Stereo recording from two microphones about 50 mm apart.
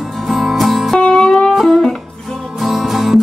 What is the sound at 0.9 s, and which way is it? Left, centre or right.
Music, centre.